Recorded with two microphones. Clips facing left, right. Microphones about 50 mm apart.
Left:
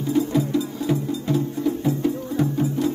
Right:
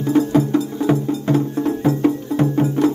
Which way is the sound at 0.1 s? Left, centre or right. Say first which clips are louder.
Right 5 dB; right.